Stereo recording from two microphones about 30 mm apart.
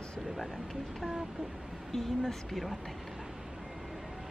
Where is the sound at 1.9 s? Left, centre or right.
Centre.